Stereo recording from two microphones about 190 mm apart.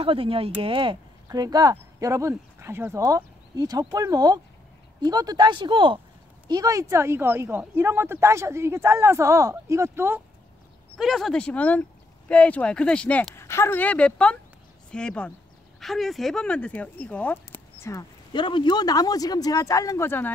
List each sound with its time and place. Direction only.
0.0 s speech: 30° right (ahead or behind); by 10.2 s 10° right (ahead or behind)
11.0 s speech: centre (ahead or behind)